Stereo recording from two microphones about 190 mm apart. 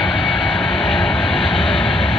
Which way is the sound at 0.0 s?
Centre (ahead or behind).